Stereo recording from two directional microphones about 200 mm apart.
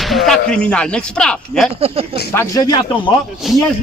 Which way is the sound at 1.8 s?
30° right (ahead or behind).